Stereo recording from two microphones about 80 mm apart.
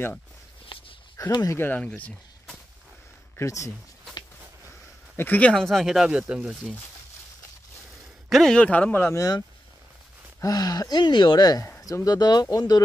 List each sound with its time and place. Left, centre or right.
0.7 s walk: left
1.2 s speech: left
1.5 s speech: left
1.8 s speech: centre
3.3 s speech: left
5.1 s speech: left
5.5 s speech: centre
8.3 s a man's voice: centre
8.5 s speech: centre
8.9 s speech: left
10.4 s speech: left